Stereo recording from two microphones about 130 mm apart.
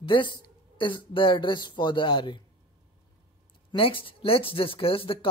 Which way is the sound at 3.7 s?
40° left (ahead or behind).